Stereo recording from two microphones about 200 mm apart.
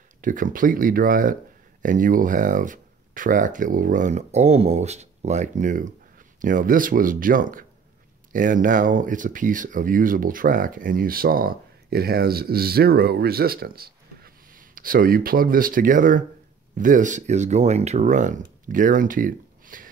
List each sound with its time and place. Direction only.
0.2 s speech: 40° right (ahead or behind)